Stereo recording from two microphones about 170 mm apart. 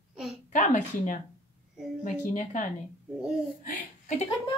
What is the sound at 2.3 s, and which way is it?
Speech, 45° left (ahead or behind).